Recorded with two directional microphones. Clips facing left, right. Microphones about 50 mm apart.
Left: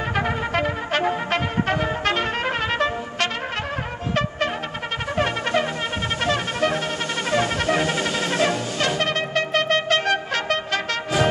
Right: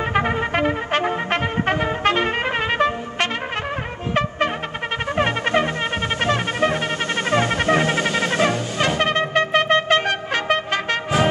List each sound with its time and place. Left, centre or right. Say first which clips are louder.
0.1 s music: right 2 dB; right
5.1 s brass instrument: right 2 dB; right
6.2 s music: right 2 dB; right